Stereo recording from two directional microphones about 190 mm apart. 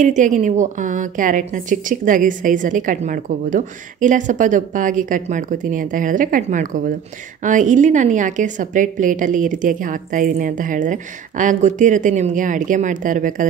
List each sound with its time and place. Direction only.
0.0 s a woman's voice: 40° right (ahead or behind)